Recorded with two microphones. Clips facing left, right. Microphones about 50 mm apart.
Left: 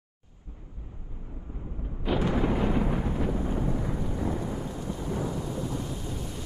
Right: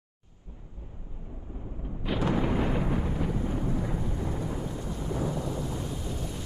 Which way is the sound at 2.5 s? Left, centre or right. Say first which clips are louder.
Left 1 dB; left.